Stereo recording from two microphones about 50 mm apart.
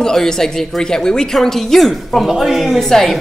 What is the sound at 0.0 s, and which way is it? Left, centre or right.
A man's voice, centre.